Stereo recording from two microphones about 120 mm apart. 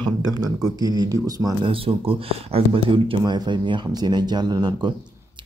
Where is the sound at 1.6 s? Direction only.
50° right (ahead or behind).